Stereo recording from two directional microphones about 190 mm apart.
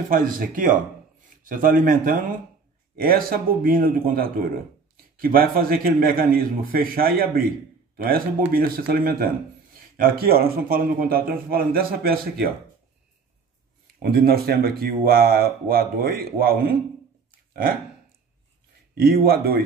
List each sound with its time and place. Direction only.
0.1 s a man's voice: 45° right (ahead or behind)
14.1 s a man's voice: 55° right (ahead or behind)
18.9 s a man's voice: 50° right (ahead or behind)